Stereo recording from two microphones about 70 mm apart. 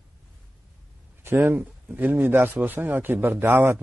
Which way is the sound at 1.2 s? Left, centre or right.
Right.